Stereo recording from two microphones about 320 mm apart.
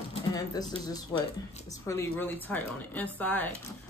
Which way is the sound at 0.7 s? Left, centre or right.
Centre.